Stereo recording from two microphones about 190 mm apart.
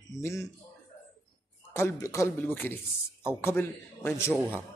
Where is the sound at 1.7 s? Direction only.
15° left (ahead or behind).